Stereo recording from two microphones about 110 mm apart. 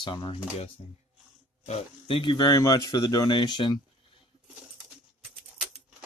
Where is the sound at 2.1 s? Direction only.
50° left (ahead or behind).